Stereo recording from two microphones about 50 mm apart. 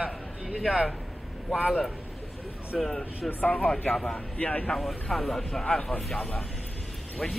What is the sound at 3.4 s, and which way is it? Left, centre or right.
Speech, left.